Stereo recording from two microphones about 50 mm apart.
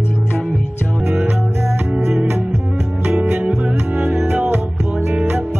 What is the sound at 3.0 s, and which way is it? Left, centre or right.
Music, centre.